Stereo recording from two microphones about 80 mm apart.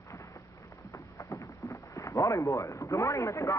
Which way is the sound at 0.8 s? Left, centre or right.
Left.